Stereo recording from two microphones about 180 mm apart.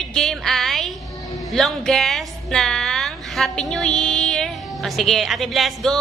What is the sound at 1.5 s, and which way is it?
A woman's voice, centre (ahead or behind).